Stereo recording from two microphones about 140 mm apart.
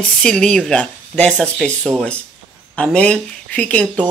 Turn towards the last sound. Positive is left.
turn(degrees=10)  # may be behind; listen again after turning